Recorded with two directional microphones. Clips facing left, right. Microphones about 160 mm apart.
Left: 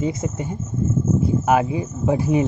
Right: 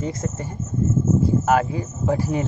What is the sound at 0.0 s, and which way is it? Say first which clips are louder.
Speech: left 3 dB; 15° left (ahead or behind).